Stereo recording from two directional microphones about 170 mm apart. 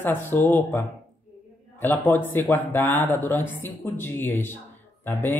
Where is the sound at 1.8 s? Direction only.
10° left (ahead or behind).